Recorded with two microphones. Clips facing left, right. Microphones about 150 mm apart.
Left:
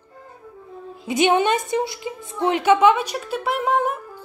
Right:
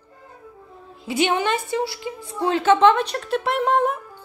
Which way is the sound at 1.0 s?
20° left (ahead or behind).